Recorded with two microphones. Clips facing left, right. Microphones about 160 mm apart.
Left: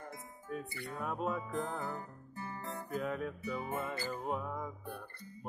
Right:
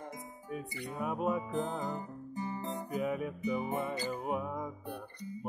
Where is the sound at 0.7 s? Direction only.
15° right (ahead or behind).